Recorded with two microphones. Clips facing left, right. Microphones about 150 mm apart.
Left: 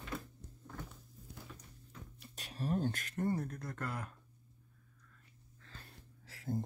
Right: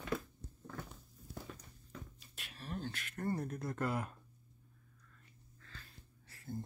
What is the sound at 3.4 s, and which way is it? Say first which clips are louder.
Speech: right 4 dB; 10° right (ahead or behind).